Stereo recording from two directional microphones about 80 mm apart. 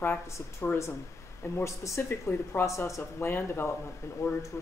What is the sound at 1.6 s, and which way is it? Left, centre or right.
Speech, left.